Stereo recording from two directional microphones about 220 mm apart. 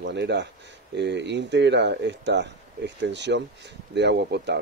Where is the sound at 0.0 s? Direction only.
50° right (ahead or behind).